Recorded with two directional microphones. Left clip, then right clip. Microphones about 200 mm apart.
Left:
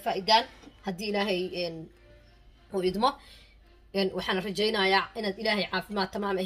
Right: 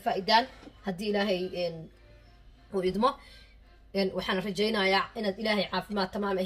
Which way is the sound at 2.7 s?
40° left (ahead or behind).